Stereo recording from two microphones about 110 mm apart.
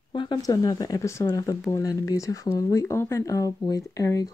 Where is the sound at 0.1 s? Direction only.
45° left (ahead or behind).